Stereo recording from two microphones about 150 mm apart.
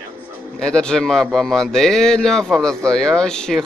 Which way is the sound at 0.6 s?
5° left (ahead or behind).